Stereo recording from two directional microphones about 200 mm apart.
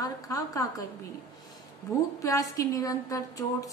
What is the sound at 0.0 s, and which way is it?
Speech, 15° left (ahead or behind).